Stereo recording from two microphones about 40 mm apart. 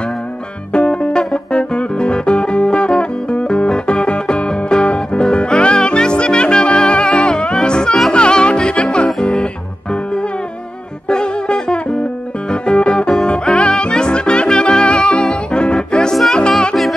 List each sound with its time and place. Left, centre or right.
0.7 s music: left
11.1 s music: left